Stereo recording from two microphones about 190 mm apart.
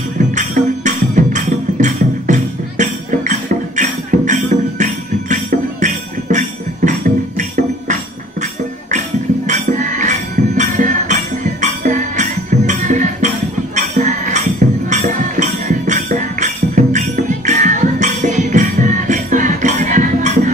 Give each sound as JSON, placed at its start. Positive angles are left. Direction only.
{"t": 0.3, "sound": "music", "side_deg": -40}
{"t": 9.5, "sound": "music", "side_deg": -40}